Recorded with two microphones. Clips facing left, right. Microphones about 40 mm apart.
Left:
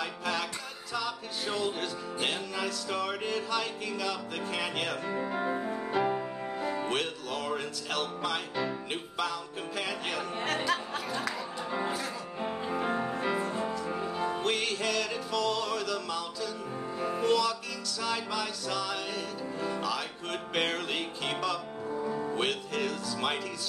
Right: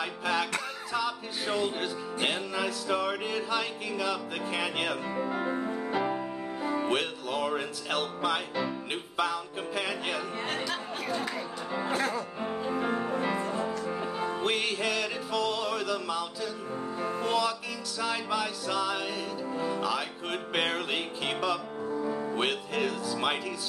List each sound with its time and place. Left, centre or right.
0.0 s music: centre
5.1 s speech: centre
5.7 s music: centre
12.6 s music: centre